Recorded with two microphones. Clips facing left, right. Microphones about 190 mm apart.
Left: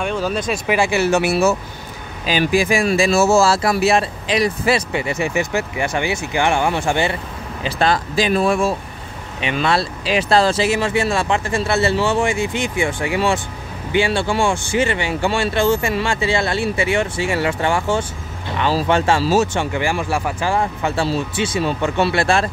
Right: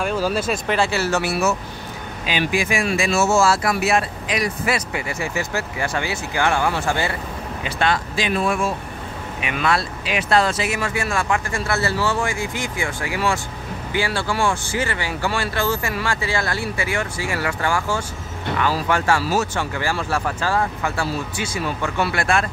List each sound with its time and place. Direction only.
0.0 s speech: 5° right (ahead or behind)
0.7 s speech: 15° left (ahead or behind)
2.2 s speech: 35° left (ahead or behind); by 7.2 s 20° left (ahead or behind)
7.6 s speech: 35° left (ahead or behind)